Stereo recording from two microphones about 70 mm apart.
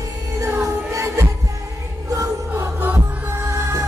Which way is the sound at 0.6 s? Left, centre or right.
Right.